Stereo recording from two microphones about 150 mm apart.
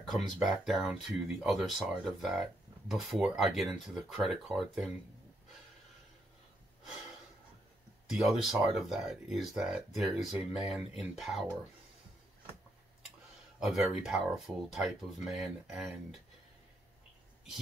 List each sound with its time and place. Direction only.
0.4 s speech: centre (ahead or behind)
8.1 s speech: centre (ahead or behind)
13.6 s speech: centre (ahead or behind)